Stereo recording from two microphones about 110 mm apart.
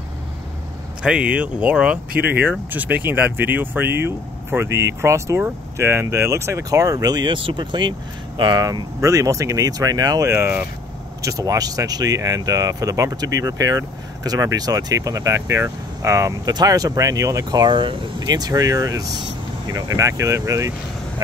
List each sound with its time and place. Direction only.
1.0 s speech: 10° right (ahead or behind); by 10.3 s 35° right (ahead or behind)
10.3 s speech: 20° right (ahead or behind)
11.2 s speech: 35° right (ahead or behind)